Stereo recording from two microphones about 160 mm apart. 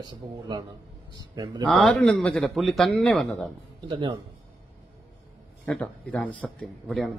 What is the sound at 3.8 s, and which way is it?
Speech, 30° right (ahead or behind).